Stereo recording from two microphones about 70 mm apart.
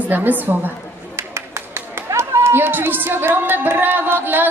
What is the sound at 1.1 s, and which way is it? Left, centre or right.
Speech, right.